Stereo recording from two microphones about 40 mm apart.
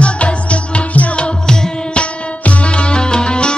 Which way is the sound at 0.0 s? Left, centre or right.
Left.